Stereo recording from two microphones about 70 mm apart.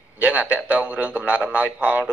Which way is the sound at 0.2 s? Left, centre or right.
Right.